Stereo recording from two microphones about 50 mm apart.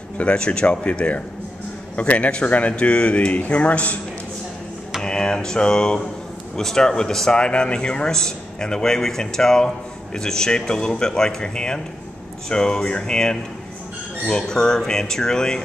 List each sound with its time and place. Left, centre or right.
0.2 s speech: left
5.0 s speech: centre